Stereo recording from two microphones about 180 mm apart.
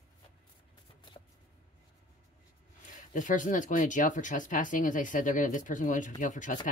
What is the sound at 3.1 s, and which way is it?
Speech, 45° left (ahead or behind).